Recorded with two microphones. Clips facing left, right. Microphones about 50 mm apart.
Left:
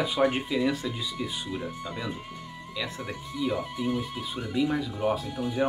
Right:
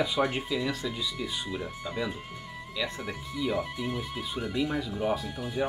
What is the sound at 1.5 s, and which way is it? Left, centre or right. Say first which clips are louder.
Speech: left 1 dB; centre.